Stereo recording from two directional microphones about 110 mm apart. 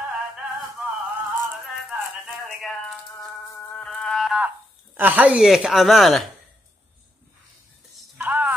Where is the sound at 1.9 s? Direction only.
10° right (ahead or behind).